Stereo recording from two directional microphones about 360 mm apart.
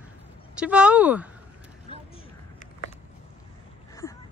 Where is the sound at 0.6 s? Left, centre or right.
Centre.